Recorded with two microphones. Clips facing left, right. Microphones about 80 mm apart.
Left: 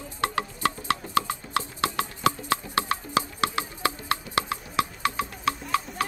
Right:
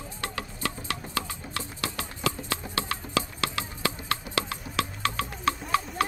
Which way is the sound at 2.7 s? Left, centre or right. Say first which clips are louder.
Left 2 dB; left.